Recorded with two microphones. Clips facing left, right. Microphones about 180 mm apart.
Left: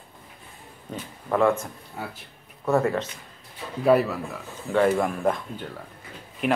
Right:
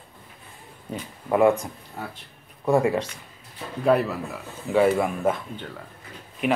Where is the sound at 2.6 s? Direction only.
15° right (ahead or behind).